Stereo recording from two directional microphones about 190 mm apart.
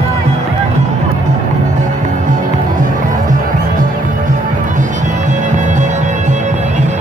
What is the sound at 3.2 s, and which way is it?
Music, 45° right (ahead or behind).